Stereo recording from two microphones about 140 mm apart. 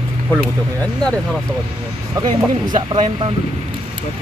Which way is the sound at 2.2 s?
35° right (ahead or behind).